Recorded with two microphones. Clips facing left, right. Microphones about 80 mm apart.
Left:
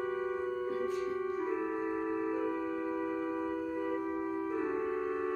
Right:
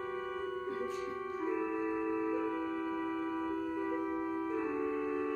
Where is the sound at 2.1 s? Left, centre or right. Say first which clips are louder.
Even; left.